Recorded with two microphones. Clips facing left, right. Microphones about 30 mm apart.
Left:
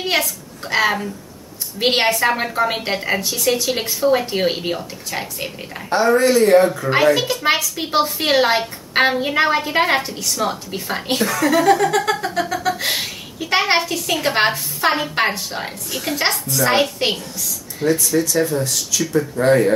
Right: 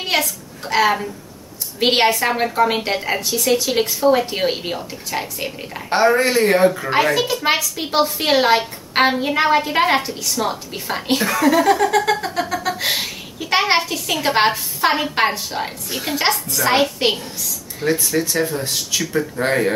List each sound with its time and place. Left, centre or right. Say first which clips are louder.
0.1 s speech: right 2 dB; centre
1.8 s a sound: right 1 dB; centre
5.9 s speech: left 1 dB; right
6.6 s speech: right 2 dB; centre
6.9 s a sound: left 2 dB; centre
15.9 s speech: left 1 dB; centre
16.2 s a sound: even; centre
17.8 s speech: left 2 dB; right
19.4 s speech: left 4 dB; right